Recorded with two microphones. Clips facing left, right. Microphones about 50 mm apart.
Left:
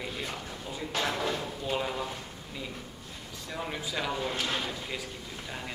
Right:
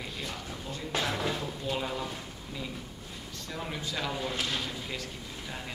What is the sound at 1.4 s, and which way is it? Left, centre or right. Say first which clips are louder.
Drawer open or close: left 1 dB; centre.